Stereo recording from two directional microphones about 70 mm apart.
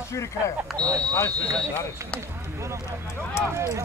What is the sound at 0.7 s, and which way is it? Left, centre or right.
Speech, right.